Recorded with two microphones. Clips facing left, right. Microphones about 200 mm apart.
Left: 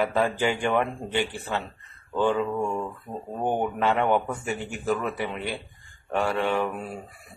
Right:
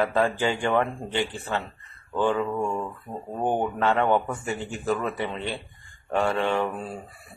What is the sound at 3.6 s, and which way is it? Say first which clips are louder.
Speech: even; 15° left (ahead or behind).